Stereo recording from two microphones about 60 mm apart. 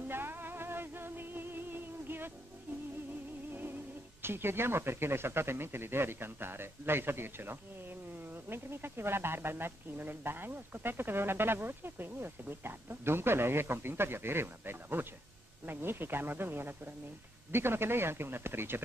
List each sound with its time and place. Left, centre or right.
0.1 s music: right
4.2 s speech: right